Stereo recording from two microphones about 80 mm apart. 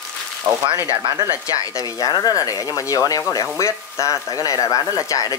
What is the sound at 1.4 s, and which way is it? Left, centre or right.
Speech, left.